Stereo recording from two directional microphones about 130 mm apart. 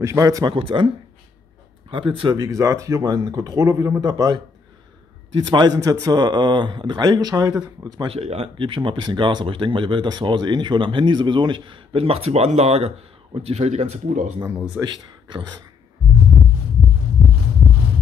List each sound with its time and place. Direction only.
0.0 s speech: 25° right (ahead or behind)
0.6 s speech: 40° right (ahead or behind)
1.9 s speech: 40° right (ahead or behind)
2.3 s speech: 25° right (ahead or behind)
8.1 s speech: 50° right (ahead or behind)
14.8 s speech: 35° right (ahead or behind)